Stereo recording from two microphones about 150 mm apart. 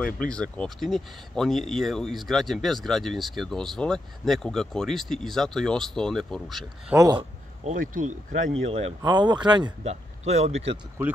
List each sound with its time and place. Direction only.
0.0 s speech: 5° left (ahead or behind)
7.0 s speech: 30° right (ahead or behind)
7.7 s speech: 65° right (ahead or behind)
8.6 s speech: 45° right (ahead or behind)
9.0 s speech: 30° right (ahead or behind)
9.8 s speech: 45° right (ahead or behind)
11.0 s speech: 10° right (ahead or behind)